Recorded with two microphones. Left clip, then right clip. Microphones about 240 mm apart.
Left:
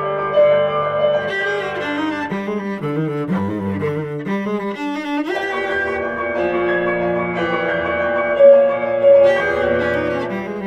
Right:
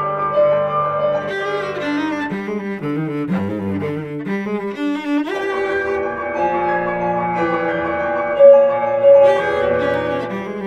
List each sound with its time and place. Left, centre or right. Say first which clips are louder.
0.4 s music: left 2 dB; right
8.4 s music: right 1 dB; right